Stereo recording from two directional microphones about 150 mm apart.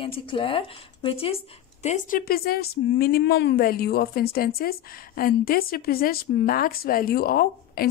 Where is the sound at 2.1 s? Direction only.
85° left.